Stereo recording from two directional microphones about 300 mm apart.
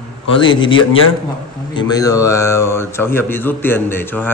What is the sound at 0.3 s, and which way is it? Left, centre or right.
A man's voice, centre.